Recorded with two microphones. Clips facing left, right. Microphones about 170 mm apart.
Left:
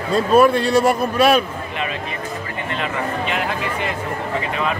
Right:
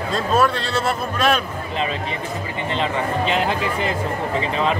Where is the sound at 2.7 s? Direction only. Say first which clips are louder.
Right 2 dB; 30° right (ahead or behind).